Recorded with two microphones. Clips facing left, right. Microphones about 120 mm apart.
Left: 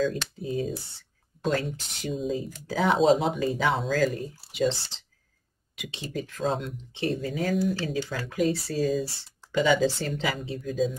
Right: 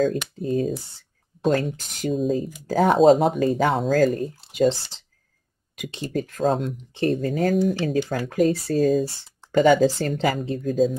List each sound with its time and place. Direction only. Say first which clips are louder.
0.0 s speech: right 5 dB; 50° right (ahead or behind)